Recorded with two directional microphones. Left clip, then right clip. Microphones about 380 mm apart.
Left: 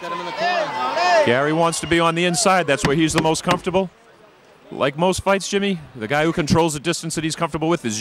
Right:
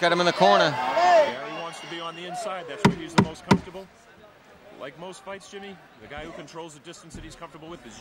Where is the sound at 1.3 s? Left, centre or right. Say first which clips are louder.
Left 16 dB; left.